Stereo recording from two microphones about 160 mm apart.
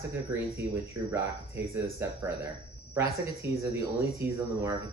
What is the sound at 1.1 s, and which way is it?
Speech, 15° right (ahead or behind).